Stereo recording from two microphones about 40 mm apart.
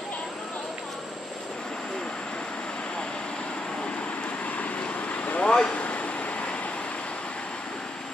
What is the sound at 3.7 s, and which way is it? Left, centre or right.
Vehicle, left.